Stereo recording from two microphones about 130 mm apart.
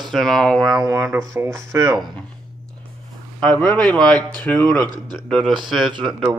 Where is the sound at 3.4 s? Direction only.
5° left (ahead or behind).